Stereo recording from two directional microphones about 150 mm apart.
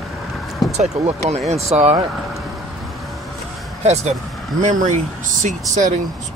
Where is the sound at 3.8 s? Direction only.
45° right (ahead or behind).